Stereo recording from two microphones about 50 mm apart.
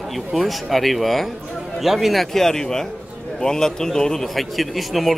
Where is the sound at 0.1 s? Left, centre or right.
Centre.